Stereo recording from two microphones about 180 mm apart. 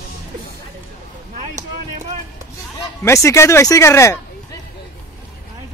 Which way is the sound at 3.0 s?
15° left (ahead or behind).